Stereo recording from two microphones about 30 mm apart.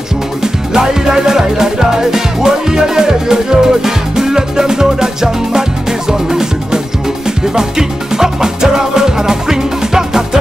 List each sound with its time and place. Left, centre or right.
0.4 s music: centre